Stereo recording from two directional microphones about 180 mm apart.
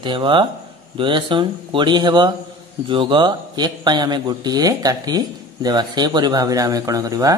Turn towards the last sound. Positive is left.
turn(degrees=-20)  # may be behind; listen again after turning